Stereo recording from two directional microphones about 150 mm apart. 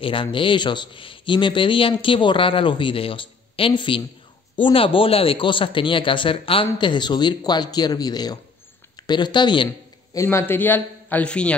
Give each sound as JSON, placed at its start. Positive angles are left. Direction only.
{"t": 0.0, "sound": "a man's voice", "side_deg": 35}
{"t": 10.1, "sound": "a man's voice", "side_deg": 15}